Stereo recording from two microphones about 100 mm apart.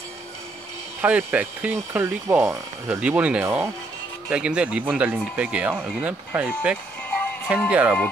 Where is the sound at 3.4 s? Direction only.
25° right (ahead or behind).